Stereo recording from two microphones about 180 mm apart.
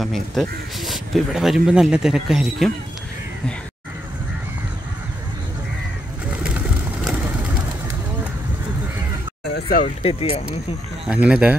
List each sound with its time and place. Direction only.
0.0 s speech: centre (ahead or behind)
9.5 s speech: 55° left (ahead or behind)
10.0 s speech: 30° left (ahead or behind)
11.1 s speech: 5° right (ahead or behind)